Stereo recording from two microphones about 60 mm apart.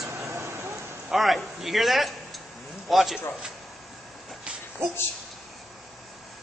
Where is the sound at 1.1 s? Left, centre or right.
Centre.